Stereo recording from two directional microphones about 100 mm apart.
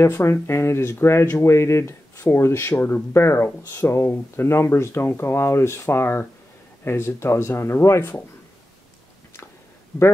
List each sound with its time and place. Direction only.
0.0 s speech: 25° left (ahead or behind)